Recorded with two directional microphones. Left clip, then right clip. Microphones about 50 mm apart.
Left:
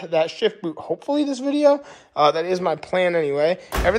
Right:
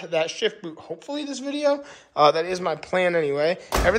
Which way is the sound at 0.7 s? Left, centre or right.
Left.